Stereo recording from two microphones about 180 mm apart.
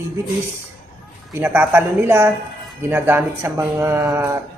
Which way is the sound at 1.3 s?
10° right (ahead or behind).